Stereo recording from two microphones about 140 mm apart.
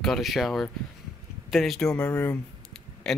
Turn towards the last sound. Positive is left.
turn(degrees=5)  # may be behind; listen again after turning